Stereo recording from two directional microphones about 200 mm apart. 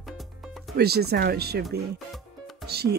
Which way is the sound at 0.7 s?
50° right (ahead or behind).